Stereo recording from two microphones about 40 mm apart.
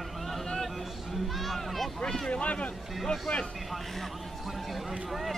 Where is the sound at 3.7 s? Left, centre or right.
Centre.